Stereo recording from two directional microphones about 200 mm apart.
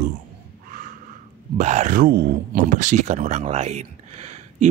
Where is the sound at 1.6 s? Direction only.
35° right (ahead or behind).